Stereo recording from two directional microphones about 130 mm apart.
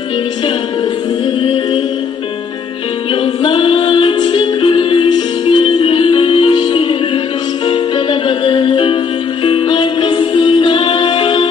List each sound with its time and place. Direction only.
1.4 s music: 40° left (ahead or behind)
3.4 s music: 40° left (ahead or behind)